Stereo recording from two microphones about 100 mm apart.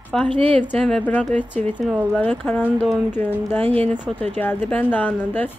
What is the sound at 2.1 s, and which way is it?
Speech, 15° left (ahead or behind).